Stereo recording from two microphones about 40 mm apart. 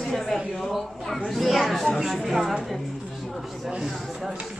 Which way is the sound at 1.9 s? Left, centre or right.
Centre.